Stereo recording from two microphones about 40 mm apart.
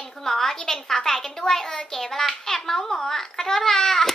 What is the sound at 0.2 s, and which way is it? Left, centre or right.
A woman's voice, centre.